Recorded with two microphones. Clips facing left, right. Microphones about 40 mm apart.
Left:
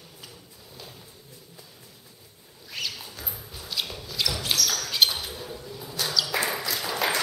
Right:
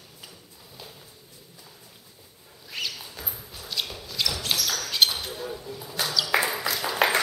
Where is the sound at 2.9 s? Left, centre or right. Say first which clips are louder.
Even; centre.